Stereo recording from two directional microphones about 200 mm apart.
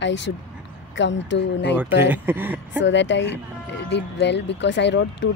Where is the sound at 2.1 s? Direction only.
10° right (ahead or behind).